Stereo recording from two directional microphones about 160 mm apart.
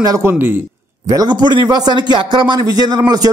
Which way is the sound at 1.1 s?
25° right (ahead or behind).